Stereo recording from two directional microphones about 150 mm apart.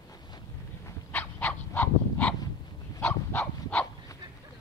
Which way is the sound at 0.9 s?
15° left (ahead or behind).